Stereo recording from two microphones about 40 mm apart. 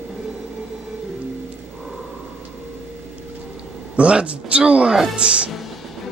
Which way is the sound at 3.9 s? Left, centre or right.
Right.